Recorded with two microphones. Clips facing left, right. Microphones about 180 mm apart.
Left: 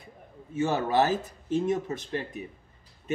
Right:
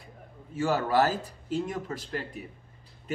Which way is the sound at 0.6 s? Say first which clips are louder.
Even; 20° left (ahead or behind).